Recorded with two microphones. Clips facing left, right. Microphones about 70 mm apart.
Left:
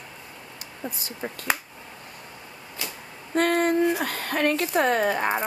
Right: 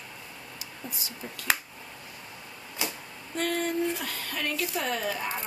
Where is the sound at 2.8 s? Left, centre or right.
Centre.